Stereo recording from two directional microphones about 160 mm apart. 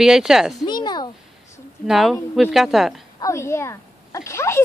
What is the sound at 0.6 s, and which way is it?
Speech, 25° left (ahead or behind).